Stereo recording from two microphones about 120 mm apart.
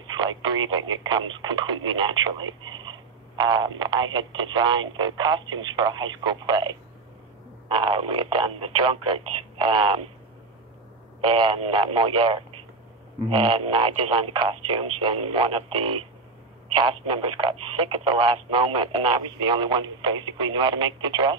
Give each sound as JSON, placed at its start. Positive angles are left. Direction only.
{"t": 0.1, "sound": "speech", "side_deg": -40}
{"t": 11.1, "sound": "speech", "side_deg": -45}